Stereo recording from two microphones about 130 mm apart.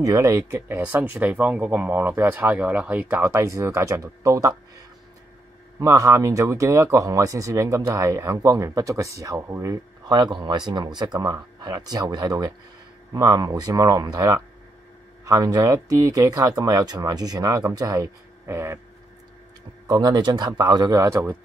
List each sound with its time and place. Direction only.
0.0 s speech: 25° right (ahead or behind)
19.9 s speech: 30° right (ahead or behind)